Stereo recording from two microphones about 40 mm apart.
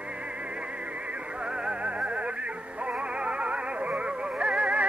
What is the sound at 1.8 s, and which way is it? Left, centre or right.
Music, right.